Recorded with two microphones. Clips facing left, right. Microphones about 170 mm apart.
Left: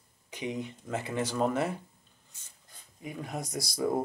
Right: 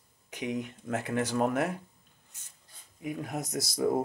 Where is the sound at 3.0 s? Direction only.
15° right (ahead or behind).